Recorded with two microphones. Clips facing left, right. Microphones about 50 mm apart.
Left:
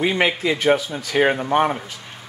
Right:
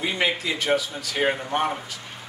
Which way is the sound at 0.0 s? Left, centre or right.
Left.